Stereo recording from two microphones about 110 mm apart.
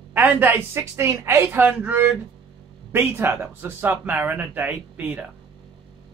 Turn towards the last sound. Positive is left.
turn(degrees=-15)  # may be behind; listen again after turning